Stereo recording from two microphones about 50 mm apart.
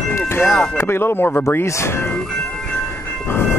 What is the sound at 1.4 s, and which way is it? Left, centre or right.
Speech, left.